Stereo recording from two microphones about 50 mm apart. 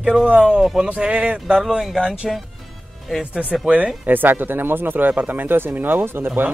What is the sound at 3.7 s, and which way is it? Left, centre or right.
Speech, right.